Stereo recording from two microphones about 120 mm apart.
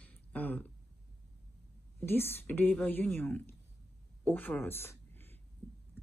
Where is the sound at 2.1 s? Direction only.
20° left (ahead or behind).